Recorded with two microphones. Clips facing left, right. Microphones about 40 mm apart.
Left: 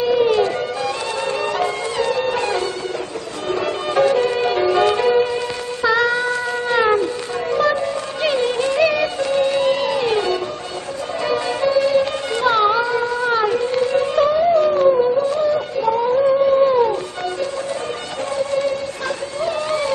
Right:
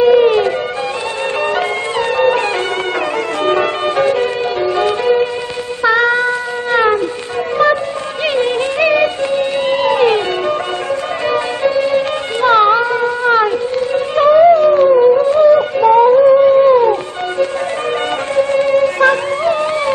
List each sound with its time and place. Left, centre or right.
0.0 s music: right
1.6 s music: right
3.9 s music: right
4.4 s music: centre
5.0 s music: centre
5.9 s child singing: right
8.3 s music: right
11.2 s music: right
16.1 s a sound: right
18.3 s music: right